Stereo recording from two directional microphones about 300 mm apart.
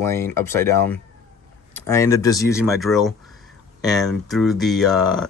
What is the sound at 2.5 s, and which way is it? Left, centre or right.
Speech, centre.